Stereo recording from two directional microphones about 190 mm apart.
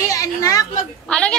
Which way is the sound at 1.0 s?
5° left (ahead or behind).